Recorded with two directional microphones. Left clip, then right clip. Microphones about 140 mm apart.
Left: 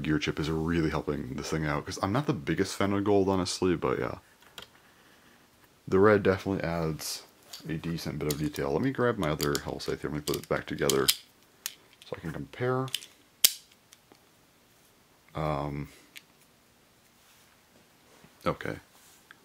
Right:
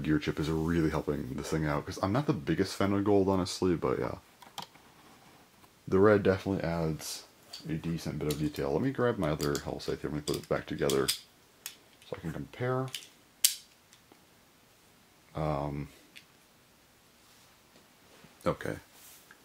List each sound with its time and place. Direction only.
0.0 s speech: 30° left (ahead or behind)
5.9 s speech: 35° left (ahead or behind)
11.6 s computer keyboard: 40° left (ahead or behind)
15.3 s speech: 40° left (ahead or behind)
18.4 s speech: 20° left (ahead or behind)